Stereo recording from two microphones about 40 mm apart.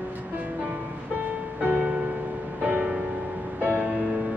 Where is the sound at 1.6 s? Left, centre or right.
Right.